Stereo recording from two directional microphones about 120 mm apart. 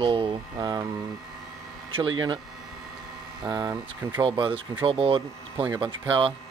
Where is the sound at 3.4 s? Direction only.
30° right (ahead or behind).